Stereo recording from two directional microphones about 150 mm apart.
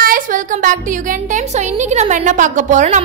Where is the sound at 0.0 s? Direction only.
65° right (ahead or behind).